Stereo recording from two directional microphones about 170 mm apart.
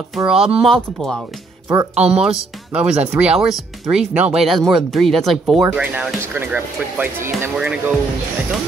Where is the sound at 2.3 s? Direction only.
5° right (ahead or behind).